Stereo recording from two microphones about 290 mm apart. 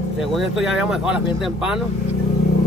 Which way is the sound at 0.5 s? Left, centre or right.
Centre.